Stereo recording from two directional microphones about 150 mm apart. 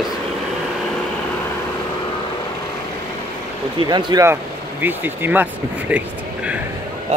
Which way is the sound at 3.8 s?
30° right (ahead or behind).